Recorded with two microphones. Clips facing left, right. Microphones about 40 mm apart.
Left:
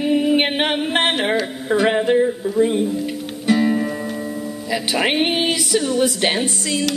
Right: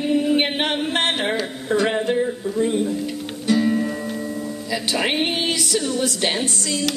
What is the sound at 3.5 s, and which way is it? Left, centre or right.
Music, centre.